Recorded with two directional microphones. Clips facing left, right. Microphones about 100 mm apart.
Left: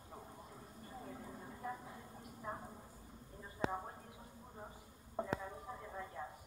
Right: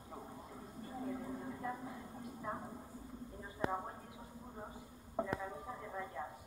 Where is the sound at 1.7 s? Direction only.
20° right (ahead or behind).